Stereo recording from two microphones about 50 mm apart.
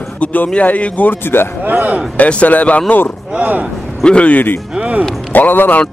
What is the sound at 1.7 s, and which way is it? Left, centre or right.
Speech, right.